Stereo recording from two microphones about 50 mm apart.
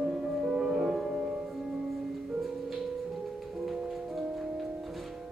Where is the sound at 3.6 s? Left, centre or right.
Centre.